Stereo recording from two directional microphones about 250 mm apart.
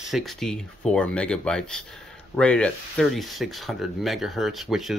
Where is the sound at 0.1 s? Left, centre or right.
Centre.